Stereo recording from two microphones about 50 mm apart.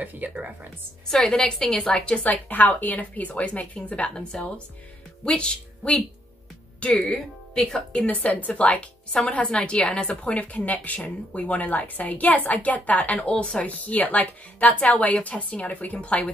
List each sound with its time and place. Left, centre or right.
0.0 s speech: right
1.0 s speech: centre
2.0 s a woman's voice: left
8.1 s a woman's voice: left